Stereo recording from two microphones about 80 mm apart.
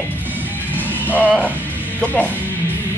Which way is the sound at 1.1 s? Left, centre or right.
Centre.